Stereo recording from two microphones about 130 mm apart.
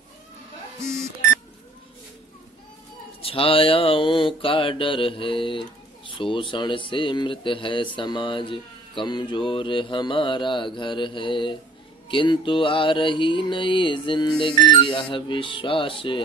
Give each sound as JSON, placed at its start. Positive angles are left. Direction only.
{"t": 3.2, "sound": "mantra", "side_deg": 45}